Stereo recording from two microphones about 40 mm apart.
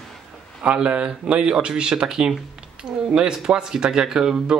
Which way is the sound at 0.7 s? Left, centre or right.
Right.